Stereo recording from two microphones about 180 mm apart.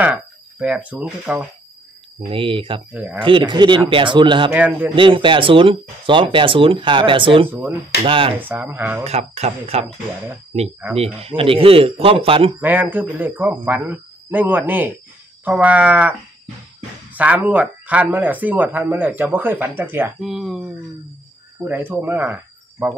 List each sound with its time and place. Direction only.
0.0 s speech: 5° right (ahead or behind)
2.1 s speech: 30° right (ahead or behind)
2.9 s speech: 10° right (ahead or behind)
3.2 s speech: 30° right (ahead or behind)
4.5 s speech: 10° right (ahead or behind)
4.9 s speech: 30° right (ahead or behind)
8.4 s speech: 10° right (ahead or behind)
9.0 s speech: 35° right (ahead or behind)
11.0 s speech: 35° right (ahead or behind)
12.5 s speech: 10° right (ahead or behind)